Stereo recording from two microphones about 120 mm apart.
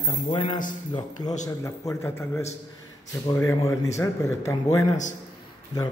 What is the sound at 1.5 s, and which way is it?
Speech, 25° left (ahead or behind).